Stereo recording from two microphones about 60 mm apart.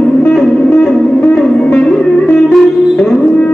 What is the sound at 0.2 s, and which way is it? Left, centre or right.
Music, centre.